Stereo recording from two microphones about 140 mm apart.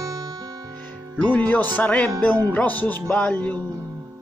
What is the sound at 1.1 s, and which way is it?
Speech, 10° left (ahead or behind).